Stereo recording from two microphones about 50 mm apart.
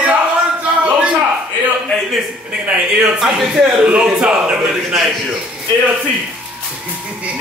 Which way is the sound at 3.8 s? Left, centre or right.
Right.